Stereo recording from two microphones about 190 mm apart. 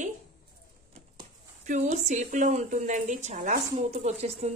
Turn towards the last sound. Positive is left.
turn(degrees=-35)  # may be behind; listen again after turning